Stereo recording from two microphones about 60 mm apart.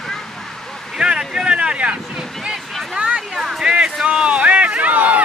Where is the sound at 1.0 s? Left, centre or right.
Centre.